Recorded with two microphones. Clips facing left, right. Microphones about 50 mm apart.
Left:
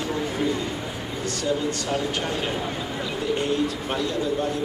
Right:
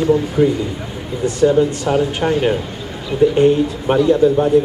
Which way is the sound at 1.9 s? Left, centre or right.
Right.